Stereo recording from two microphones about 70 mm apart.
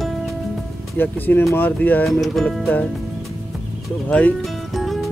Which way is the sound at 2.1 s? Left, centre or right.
Centre.